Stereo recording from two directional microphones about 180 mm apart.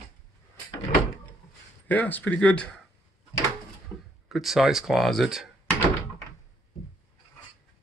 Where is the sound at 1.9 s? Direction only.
10° left (ahead or behind).